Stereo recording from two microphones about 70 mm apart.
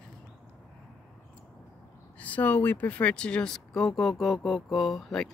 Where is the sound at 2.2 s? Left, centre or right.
Left.